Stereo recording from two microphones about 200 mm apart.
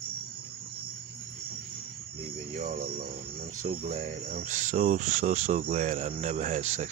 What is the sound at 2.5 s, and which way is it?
Speech, 40° right (ahead or behind).